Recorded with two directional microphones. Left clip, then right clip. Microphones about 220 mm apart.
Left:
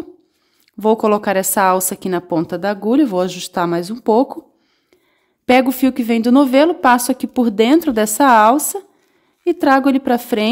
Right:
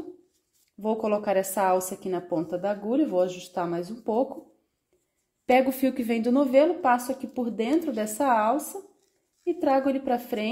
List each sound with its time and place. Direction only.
0.7 s a woman's voice: 35° left (ahead or behind)
5.4 s a woman's voice: 30° left (ahead or behind)